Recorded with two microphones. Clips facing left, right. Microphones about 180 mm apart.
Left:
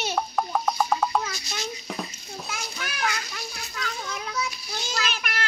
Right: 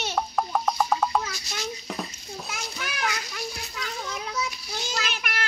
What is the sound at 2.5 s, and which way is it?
Speech, 15° right (ahead or behind).